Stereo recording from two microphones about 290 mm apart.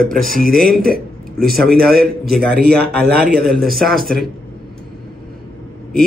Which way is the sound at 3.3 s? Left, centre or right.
Centre.